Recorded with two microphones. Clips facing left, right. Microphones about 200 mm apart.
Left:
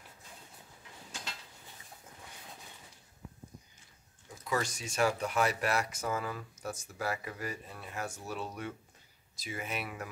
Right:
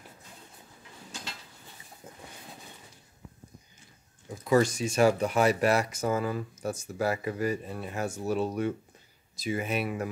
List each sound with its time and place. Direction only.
4.5 s speech: 30° right (ahead or behind)